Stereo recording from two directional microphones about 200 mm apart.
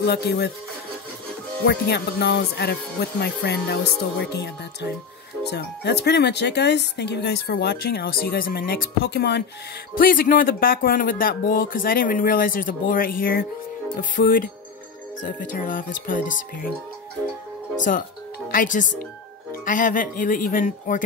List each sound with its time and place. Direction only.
0.0 s speech: 55° left (ahead or behind)
1.7 s speech: 55° left (ahead or behind)
9.9 s speech: 45° left (ahead or behind)
17.7 s speech: 40° left (ahead or behind)